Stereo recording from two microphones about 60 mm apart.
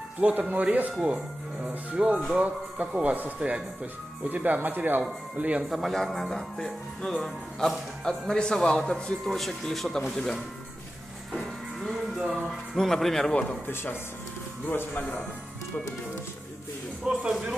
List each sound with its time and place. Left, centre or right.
0.2 s speech: right
5.4 s speech: centre
5.7 s speech: centre
11.9 s music: centre
12.7 s speech: centre
13.3 s a man's voice: left
14.7 s speech: left
17.0 s speech: centre